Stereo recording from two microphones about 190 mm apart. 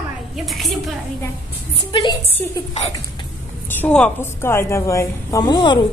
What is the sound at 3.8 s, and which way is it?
A woman's voice, 5° left (ahead or behind).